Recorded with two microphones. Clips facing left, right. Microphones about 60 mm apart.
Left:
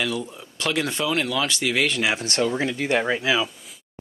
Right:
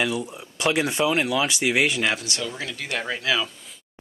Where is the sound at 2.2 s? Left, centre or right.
Left.